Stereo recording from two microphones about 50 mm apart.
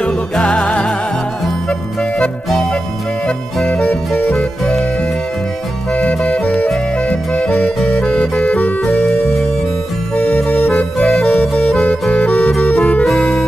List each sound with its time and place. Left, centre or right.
0.0 s music: centre
4.3 s music: centre
5.9 s music: left
8.8 s music: centre
12.5 s music: centre